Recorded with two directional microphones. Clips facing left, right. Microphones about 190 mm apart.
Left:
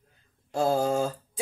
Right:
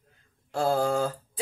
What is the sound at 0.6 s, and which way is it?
Speech, 15° left (ahead or behind).